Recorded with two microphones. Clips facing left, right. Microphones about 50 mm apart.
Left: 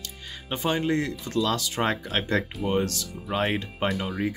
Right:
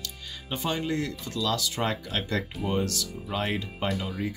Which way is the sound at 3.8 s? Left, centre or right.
Centre.